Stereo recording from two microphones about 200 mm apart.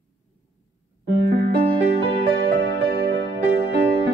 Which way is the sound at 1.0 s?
55° right (ahead or behind).